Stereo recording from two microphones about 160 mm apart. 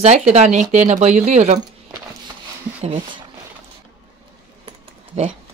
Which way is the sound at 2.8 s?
40° right (ahead or behind).